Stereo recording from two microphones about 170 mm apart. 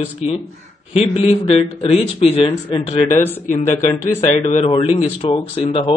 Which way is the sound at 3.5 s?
45° left (ahead or behind).